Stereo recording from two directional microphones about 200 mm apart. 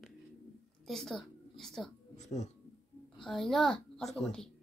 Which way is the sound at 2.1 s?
35° left (ahead or behind).